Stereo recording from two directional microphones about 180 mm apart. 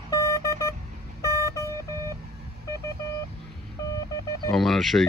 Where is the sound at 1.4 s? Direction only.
15° left (ahead or behind).